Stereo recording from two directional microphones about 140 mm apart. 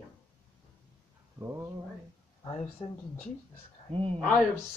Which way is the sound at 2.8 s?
40° left (ahead or behind).